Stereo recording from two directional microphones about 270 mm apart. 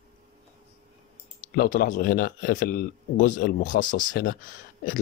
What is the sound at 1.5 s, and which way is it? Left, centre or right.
A man's voice, left.